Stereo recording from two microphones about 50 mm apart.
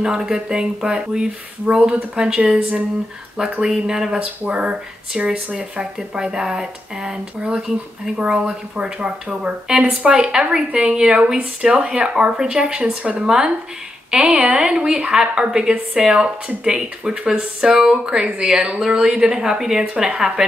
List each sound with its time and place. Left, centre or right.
0.0 s speech: centre
14.1 s speech: centre